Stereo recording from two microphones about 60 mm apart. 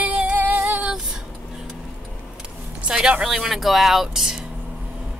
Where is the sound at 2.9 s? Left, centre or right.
Centre.